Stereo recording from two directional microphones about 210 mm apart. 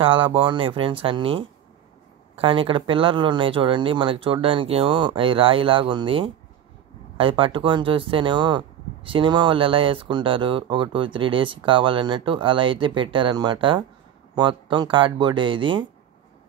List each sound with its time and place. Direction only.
0.0 s speech: 25° right (ahead or behind)